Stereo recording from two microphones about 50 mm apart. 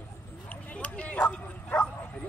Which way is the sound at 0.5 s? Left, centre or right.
Left.